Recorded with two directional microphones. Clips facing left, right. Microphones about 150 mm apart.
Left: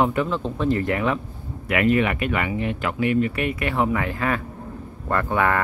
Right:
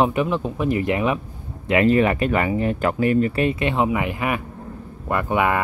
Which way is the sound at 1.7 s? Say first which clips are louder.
Right 3 dB; 30° right (ahead or behind).